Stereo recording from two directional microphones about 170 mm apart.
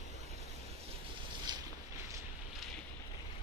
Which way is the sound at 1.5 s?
25° right (ahead or behind).